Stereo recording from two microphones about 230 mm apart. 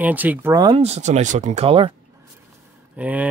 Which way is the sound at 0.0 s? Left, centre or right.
Centre.